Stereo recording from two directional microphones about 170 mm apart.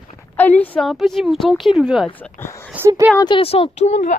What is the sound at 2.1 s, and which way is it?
Speech, 10° left (ahead or behind).